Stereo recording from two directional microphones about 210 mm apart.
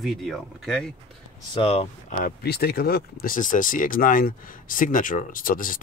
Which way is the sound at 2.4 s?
50° left (ahead or behind).